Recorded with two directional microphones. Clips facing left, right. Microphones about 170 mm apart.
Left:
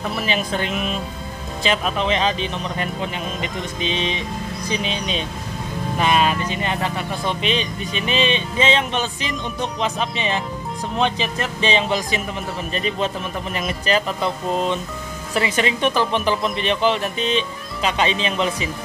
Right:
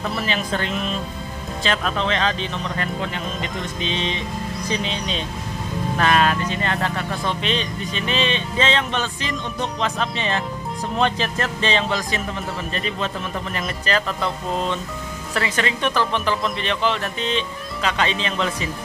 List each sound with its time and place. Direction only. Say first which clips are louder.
0.2 s speech: left 3 dB; 15° left (ahead or behind)
11.0 s speech: even; centre (ahead or behind)
11.6 s speech: left 3 dB; 15° left (ahead or behind)